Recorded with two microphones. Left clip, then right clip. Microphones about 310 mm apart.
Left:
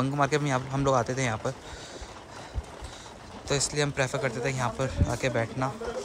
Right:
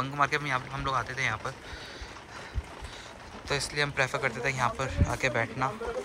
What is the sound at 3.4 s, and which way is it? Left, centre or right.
Speech, centre.